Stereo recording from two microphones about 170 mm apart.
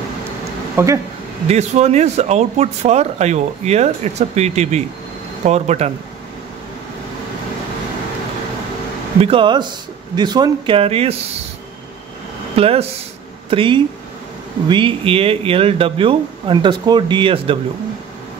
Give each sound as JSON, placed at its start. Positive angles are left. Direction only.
{"t": 0.8, "sound": "speech", "side_deg": -15}
{"t": 1.5, "sound": "speech", "side_deg": -40}
{"t": 9.2, "sound": "speech", "side_deg": -30}
{"t": 12.5, "sound": "speech", "side_deg": -35}